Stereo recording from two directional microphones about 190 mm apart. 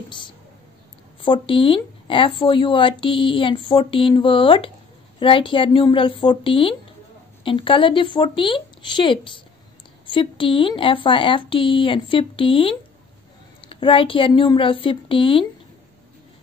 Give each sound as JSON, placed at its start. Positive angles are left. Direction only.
{"t": 1.2, "sound": "speech", "side_deg": 25}